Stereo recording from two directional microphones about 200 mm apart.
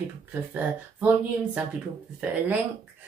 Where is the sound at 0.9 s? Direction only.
5° right (ahead or behind).